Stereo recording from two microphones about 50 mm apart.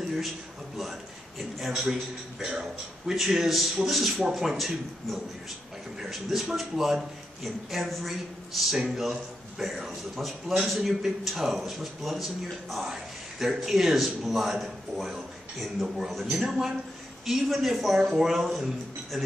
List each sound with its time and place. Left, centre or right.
1.6 s a man's voice: centre
2.4 s a man's voice: centre
3.2 s a man's voice: centre